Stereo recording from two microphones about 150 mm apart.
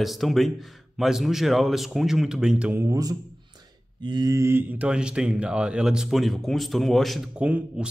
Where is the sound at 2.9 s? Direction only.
25° right (ahead or behind).